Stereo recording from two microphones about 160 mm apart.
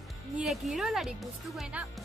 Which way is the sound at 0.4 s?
Centre (ahead or behind).